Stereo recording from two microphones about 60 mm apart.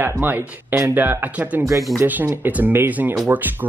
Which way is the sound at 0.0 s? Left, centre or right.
Right.